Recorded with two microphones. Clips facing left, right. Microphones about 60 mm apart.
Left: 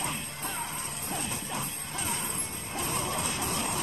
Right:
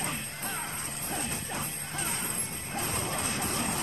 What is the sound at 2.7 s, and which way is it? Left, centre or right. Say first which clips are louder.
Music: left 1 dB; right.